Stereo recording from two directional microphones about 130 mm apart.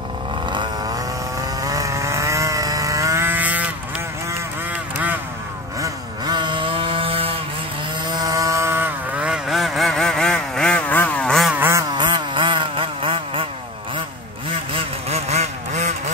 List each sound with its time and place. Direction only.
0.5 s vehicle: 35° right (ahead or behind); by 3.6 s 15° right (ahead or behind)
5.8 s vehicle: 35° right (ahead or behind)
8.2 s vehicle: 25° right (ahead or behind); by 11.5 s 5° left (ahead or behind)
11.5 s a sound: 15° right (ahead or behind)
11.9 s chainsaw: 35° right (ahead or behind)
14.7 s vehicle: 50° right (ahead or behind)